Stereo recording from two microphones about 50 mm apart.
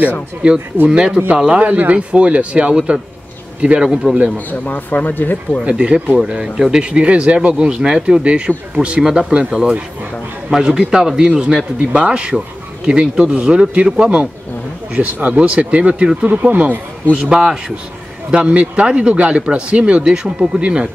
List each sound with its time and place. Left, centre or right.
0.4 s speech: right
4.5 s speech: left
5.7 s speech: centre
9.0 s speech: centre
9.3 s speech: right
14.9 s speech: right
17.4 s speech: centre
18.3 s speech: right